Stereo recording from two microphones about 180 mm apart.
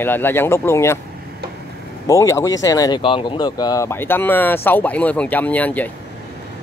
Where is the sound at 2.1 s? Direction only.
15° left (ahead or behind).